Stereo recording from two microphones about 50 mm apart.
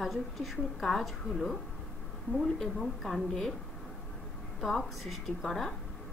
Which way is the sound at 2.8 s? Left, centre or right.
Centre.